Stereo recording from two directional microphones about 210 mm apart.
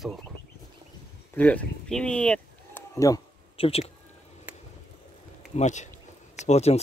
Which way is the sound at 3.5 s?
25° left (ahead or behind).